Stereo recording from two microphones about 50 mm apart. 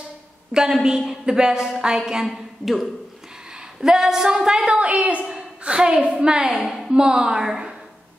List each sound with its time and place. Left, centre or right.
0.5 s a woman's voice: centre
3.8 s a woman's voice: centre
5.3 s a sound: right
6.2 s a woman's voice: centre